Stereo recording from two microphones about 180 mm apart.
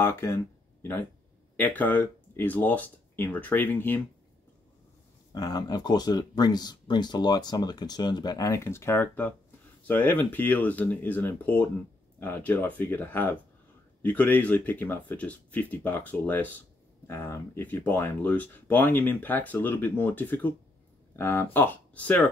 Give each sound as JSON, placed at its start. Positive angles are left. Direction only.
{"t": 0.0, "sound": "speech", "side_deg": 15}
{"t": 1.6, "sound": "speech", "side_deg": 10}
{"t": 5.3, "sound": "speech", "side_deg": 20}